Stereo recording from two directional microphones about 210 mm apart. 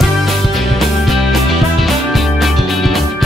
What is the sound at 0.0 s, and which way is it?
Music, centre (ahead or behind).